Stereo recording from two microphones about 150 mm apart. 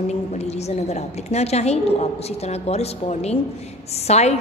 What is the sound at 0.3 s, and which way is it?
A woman's voice, 45° left (ahead or behind).